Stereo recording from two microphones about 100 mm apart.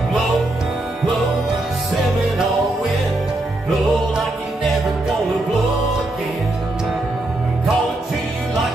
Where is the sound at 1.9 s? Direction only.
Centre (ahead or behind).